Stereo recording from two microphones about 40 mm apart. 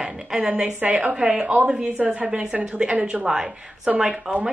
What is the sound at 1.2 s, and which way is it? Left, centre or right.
Speech, right.